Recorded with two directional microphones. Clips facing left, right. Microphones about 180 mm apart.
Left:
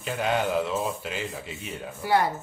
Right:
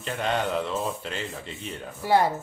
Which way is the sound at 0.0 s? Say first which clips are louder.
Left 1 dB; 5° left (ahead or behind).